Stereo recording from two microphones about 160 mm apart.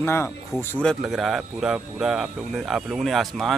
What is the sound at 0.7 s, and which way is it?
Speech, 5° left (ahead or behind).